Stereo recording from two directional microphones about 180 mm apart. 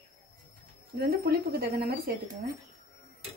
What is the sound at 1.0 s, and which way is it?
A woman's voice, 60° right (ahead or behind).